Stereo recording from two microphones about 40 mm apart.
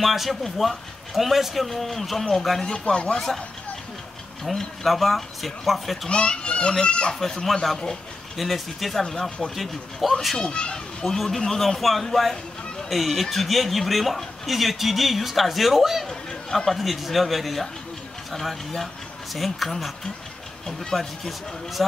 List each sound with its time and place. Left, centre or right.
0.0 s speech: centre
2.6 s a child's voice: left
4.6 s speech: centre
6.0 s a child's voice: left
8.4 s speech: centre
10.3 s a child's voice: left
11.1 s a man's voice: centre
16.1 s speech: centre
20.6 s a man's voice: centre